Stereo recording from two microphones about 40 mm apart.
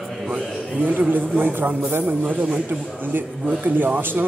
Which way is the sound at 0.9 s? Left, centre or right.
Right.